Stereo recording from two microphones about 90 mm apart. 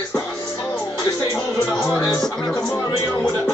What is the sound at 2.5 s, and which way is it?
Speech, 5° left (ahead or behind).